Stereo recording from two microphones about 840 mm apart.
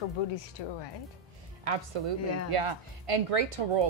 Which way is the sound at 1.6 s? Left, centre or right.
Right.